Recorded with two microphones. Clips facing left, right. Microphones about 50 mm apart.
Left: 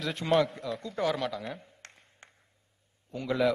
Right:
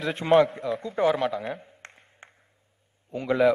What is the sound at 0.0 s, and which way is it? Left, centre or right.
A man's voice, right.